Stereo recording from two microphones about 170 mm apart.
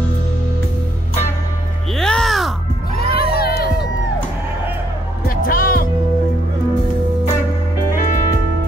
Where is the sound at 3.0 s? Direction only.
65° left (ahead or behind).